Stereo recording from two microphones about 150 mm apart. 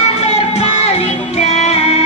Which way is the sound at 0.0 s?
45° left (ahead or behind).